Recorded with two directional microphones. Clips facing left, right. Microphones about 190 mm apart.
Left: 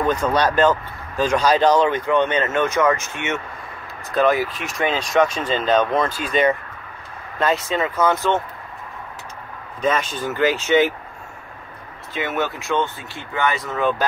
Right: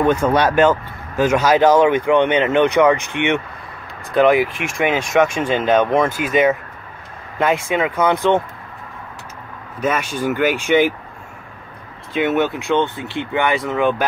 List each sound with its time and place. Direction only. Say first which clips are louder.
0.1 s speech: right 3 dB; 10° right (ahead or behind)
9.8 s speech: right 1 dB; 10° right (ahead or behind)
12.1 s speech: right 6 dB; 20° right (ahead or behind)